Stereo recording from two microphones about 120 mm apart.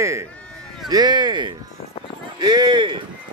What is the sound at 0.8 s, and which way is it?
A man's voice, 35° right (ahead or behind).